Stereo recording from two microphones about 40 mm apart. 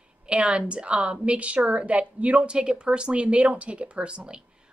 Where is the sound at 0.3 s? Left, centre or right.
Right.